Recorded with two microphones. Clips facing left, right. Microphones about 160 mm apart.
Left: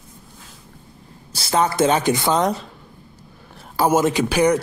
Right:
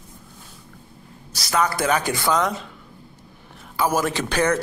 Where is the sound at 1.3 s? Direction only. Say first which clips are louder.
Left 4 dB; 30° left (ahead or behind).